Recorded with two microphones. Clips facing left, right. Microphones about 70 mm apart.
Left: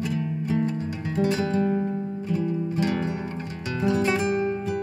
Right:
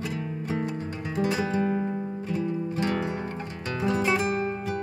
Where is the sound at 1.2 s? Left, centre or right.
Centre.